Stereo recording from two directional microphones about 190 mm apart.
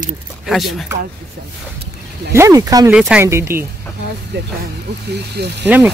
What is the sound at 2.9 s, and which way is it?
Speech, 5° right (ahead or behind).